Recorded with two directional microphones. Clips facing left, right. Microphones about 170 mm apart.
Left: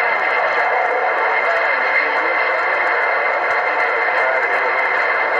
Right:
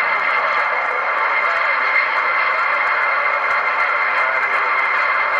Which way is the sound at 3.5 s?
45° left (ahead or behind).